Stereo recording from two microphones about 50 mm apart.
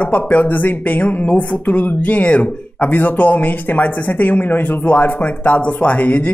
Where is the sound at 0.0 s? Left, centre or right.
Left.